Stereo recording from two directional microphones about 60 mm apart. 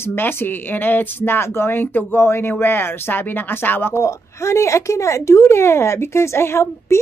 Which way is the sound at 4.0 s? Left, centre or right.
Left.